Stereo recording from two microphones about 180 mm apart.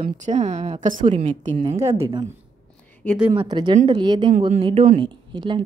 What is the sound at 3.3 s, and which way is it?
A woman's voice, 25° right (ahead or behind).